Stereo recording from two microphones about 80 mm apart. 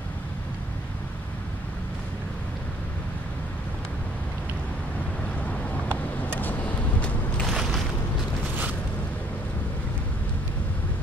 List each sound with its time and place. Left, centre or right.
6.4 s vehicle: centre
7.4 s boat: centre